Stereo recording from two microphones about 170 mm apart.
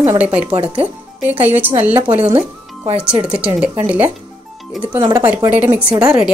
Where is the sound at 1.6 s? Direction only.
10° right (ahead or behind).